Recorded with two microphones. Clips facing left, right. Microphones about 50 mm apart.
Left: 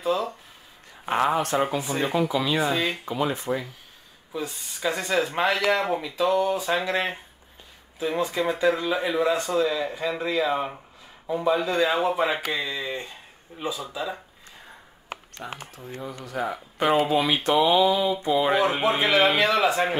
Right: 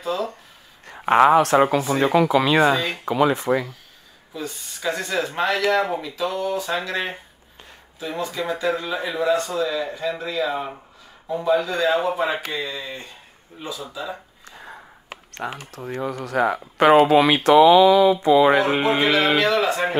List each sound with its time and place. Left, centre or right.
0.0 s speech: centre
0.8 s speech: right
3.1 s speech: right
4.8 s speech: centre
8.2 s speech: centre
9.2 s a man's voice: left
15.3 s speech: right
19.4 s a man's voice: centre